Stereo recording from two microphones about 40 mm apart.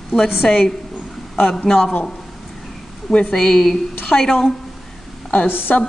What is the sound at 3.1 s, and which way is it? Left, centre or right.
Speech, left.